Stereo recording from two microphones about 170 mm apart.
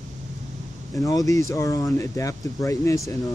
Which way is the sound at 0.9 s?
20° left (ahead or behind).